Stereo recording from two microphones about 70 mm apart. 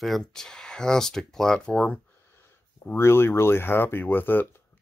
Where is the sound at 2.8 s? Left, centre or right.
Left.